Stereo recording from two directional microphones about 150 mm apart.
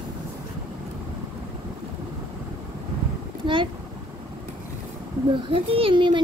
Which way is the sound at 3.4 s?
35° right (ahead or behind).